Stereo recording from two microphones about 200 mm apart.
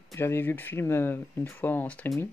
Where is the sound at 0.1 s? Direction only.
10° left (ahead or behind).